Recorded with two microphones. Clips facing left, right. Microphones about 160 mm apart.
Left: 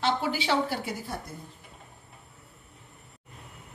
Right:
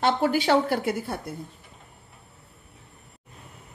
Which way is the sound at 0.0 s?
50° right (ahead or behind).